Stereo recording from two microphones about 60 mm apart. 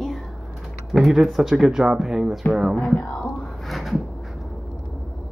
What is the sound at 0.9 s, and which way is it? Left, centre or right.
Speech, centre.